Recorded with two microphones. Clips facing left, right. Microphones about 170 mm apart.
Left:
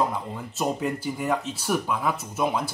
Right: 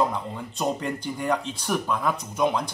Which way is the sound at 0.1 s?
5° left (ahead or behind).